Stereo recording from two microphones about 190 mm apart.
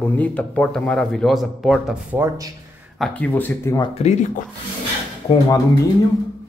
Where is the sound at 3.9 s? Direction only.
35° left (ahead or behind).